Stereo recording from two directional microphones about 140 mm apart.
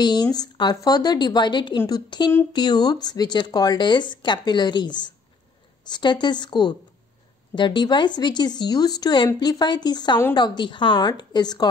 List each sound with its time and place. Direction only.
0.0 s a woman's voice: 30° left (ahead or behind)